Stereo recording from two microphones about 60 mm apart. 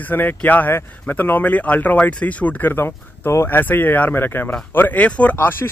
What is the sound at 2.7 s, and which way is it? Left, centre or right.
Speech, left.